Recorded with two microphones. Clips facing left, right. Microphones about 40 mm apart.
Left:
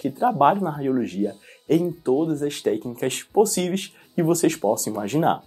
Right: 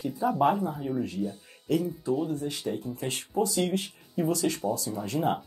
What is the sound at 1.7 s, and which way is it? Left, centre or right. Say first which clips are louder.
Speech: left 7 dB; left.